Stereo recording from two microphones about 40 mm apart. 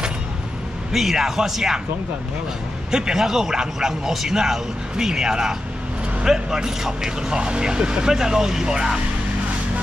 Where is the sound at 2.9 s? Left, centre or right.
Centre.